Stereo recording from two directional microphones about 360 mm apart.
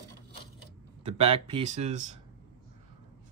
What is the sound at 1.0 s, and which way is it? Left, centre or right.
Speech, centre.